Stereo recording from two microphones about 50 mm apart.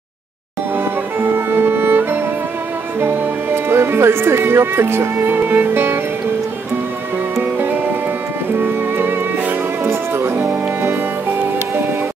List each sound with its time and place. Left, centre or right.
0.7 s music: right
3.0 s speech: right
7.5 s music: right
9.8 s music: right
10.3 s music: right